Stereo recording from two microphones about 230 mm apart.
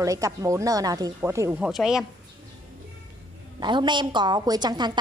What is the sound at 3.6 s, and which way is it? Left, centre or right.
A woman's voice, centre.